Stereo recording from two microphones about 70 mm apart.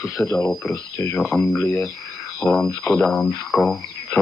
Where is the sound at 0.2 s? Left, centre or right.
Left.